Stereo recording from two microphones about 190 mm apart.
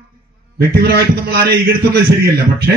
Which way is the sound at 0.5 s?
55° right (ahead or behind).